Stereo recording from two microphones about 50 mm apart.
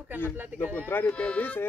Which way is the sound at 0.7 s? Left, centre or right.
Left.